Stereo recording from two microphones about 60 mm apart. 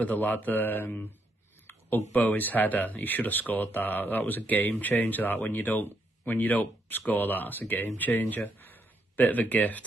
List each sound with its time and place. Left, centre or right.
0.0 s speech: left